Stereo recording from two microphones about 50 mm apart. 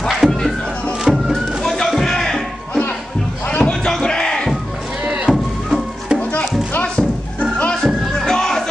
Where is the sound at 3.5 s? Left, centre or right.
Left.